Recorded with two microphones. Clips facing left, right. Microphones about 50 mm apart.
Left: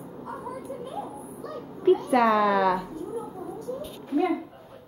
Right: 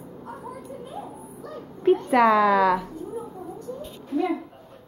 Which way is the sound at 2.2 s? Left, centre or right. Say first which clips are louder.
Right 4 dB; centre.